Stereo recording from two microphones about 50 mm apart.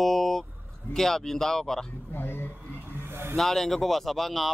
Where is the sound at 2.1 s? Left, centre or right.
Left.